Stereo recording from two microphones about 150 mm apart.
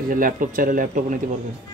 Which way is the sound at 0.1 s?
65° right (ahead or behind).